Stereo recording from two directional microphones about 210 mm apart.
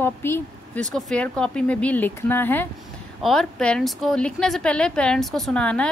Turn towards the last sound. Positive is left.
turn(degrees=5)  # may be behind; listen again after turning